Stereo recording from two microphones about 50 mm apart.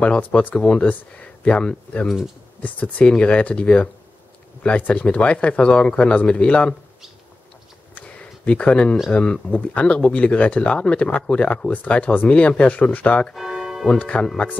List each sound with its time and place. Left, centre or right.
0.0 s speech: left
0.6 s speech: centre
2.0 s speech: centre
2.6 s speech: left
3.1 s speech: left
8.2 s speech: left
13.4 s music: centre
13.9 s speech: left
14.2 s speech: centre